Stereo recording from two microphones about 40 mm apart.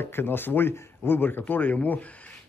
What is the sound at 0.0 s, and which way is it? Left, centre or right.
A man's voice, left.